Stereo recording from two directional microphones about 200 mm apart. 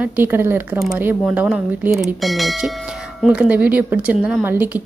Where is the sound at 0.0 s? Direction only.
10° right (ahead or behind).